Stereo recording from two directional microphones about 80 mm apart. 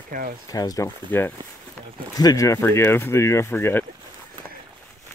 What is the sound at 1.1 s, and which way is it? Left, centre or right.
Speech, left.